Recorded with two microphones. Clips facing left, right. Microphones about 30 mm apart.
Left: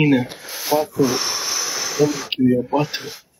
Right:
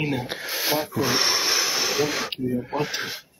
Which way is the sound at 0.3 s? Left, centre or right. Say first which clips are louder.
Left 4 dB; right.